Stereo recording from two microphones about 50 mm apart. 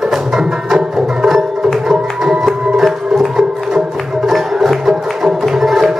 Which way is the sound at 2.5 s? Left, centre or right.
Centre.